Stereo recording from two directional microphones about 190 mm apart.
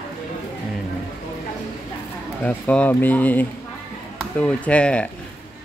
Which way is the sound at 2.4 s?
5° left (ahead or behind).